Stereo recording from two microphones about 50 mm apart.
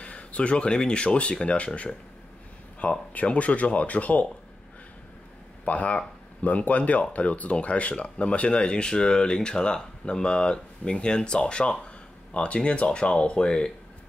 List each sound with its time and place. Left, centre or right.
0.0 s speech: left
5.7 s speech: left